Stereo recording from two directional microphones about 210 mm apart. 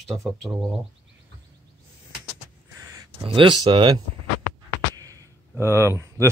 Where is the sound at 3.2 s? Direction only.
25° right (ahead or behind).